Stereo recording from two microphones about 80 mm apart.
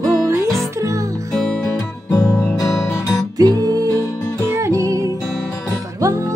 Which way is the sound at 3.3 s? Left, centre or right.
Right.